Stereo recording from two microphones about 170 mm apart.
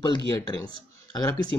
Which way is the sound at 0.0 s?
25° left (ahead or behind).